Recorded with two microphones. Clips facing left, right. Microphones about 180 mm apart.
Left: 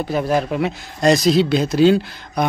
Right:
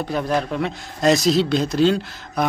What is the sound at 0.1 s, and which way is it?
A man's voice, 5° left (ahead or behind).